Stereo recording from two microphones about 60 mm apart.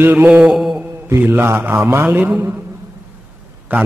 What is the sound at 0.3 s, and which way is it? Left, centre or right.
Mantra, centre.